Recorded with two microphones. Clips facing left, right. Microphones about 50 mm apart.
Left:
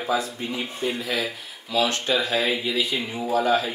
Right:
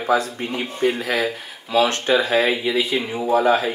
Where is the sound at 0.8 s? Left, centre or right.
Right.